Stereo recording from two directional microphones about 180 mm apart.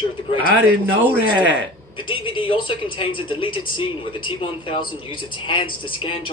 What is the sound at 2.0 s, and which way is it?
Speech, 30° left (ahead or behind).